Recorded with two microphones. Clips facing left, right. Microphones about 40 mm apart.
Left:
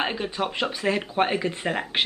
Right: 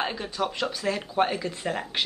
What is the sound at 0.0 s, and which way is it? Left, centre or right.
Speech, left.